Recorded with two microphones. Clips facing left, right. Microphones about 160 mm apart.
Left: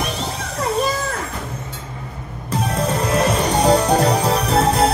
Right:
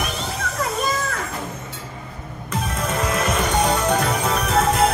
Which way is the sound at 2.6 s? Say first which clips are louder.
Left 4 dB; 35° left (ahead or behind).